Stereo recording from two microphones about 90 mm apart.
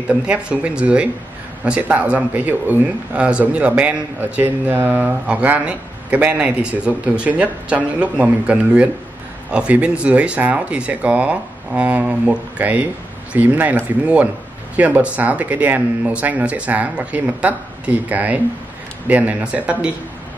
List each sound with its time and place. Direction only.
0.1 s speech: 15° right (ahead or behind)